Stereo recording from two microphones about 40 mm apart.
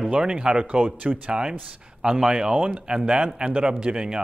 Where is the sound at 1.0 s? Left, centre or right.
Right.